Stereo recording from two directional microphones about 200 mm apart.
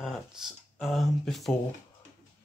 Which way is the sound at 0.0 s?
Centre (ahead or behind).